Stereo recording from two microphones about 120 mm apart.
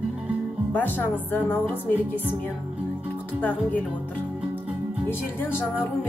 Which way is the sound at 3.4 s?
15° left (ahead or behind).